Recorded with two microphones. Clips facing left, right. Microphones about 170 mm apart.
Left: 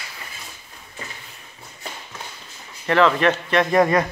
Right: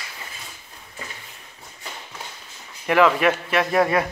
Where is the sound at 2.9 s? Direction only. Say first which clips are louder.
Even; 10° right (ahead or behind).